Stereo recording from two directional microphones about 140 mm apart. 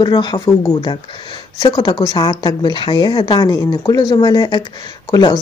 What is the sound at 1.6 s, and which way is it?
Speech, 30° left (ahead or behind).